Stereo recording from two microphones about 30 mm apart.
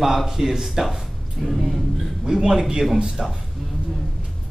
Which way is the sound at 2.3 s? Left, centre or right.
Centre.